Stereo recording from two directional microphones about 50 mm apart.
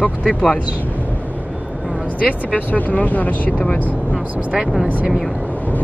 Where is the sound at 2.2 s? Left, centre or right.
Left.